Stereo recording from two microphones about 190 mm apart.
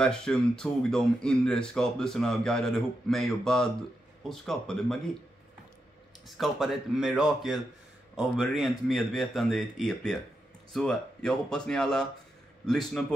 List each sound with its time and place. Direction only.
0.0 s speech: 5° left (ahead or behind)
6.2 s speech: centre (ahead or behind)